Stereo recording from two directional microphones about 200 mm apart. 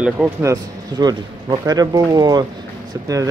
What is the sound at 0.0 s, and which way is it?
Speech, 10° right (ahead or behind).